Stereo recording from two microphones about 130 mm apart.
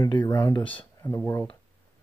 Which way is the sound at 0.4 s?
35° left (ahead or behind).